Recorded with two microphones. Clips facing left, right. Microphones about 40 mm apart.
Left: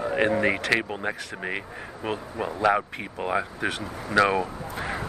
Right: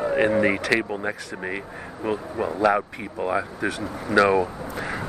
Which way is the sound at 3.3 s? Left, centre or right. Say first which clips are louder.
Right 1 dB; left.